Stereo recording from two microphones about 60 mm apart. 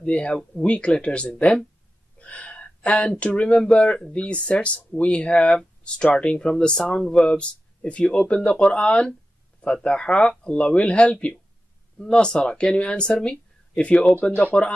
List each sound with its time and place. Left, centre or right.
0.0 s speech: centre